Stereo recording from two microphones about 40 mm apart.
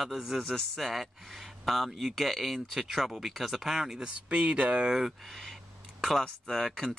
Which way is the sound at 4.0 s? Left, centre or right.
Right.